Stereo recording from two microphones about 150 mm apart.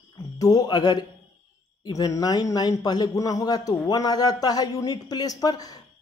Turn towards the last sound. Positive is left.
turn(degrees=25)  # may be behind; listen again after turning